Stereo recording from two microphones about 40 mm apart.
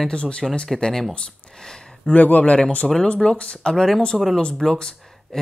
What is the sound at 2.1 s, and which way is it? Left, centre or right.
Speech, left.